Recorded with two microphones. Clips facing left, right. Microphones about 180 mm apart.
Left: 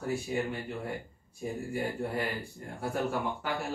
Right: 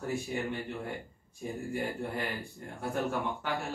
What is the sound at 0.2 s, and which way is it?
Speech, centre (ahead or behind).